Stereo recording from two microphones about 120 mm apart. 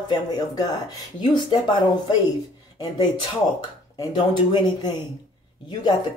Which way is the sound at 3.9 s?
35° left (ahead or behind).